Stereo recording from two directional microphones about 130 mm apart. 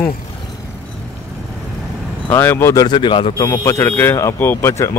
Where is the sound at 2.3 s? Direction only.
15° left (ahead or behind).